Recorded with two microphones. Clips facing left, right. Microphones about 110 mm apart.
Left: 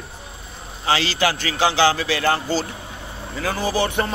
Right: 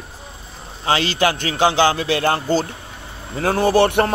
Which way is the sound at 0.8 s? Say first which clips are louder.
Right 2 dB; 45° right (ahead or behind).